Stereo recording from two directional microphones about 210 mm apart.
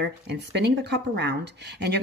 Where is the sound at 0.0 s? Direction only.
55° right (ahead or behind).